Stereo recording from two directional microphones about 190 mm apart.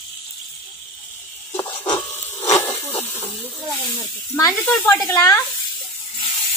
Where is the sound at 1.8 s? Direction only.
15° left (ahead or behind).